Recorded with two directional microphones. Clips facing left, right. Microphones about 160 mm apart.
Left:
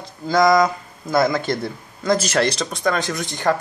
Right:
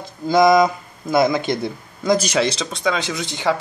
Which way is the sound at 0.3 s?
15° right (ahead or behind).